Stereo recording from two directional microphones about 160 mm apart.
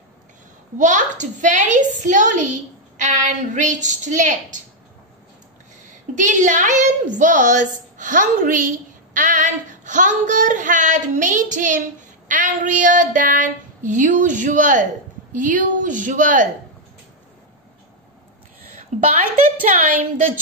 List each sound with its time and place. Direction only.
0.7 s a woman's voice: 50° right (ahead or behind)
6.1 s a woman's voice: 50° right (ahead or behind)
18.9 s a woman's voice: 45° right (ahead or behind)